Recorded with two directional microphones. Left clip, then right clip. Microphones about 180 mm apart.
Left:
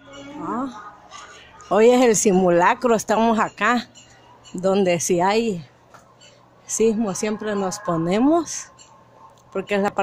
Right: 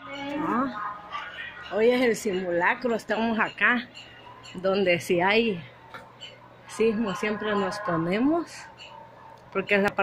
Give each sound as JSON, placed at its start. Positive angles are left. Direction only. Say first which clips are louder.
{"t": 0.5, "sound": "music", "louder": "left 1 dB", "side_deg": 10}
{"t": 1.7, "sound": "speech", "louder": "left 8 dB", "side_deg": 35}
{"t": 6.8, "sound": "speech", "louder": "left 4 dB", "side_deg": 30}